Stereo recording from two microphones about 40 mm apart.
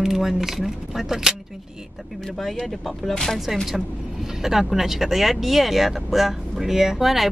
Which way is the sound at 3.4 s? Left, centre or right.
Centre.